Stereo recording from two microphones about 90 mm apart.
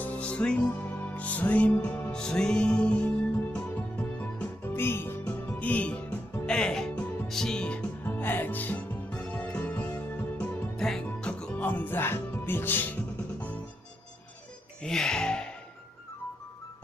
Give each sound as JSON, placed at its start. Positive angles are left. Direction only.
{"t": 0.0, "sound": "music", "side_deg": 15}
{"t": 8.0, "sound": "music", "side_deg": 20}
{"t": 14.8, "sound": "music", "side_deg": 5}